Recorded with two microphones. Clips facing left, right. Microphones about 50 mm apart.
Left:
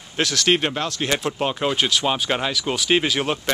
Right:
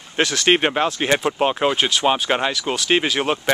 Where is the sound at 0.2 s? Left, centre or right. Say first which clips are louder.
Right 3 dB; centre.